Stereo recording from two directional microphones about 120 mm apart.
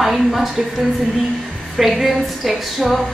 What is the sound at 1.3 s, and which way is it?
A woman's voice, centre (ahead or behind).